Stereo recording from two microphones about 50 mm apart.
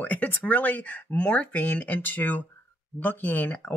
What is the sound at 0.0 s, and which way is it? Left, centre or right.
Speech, left.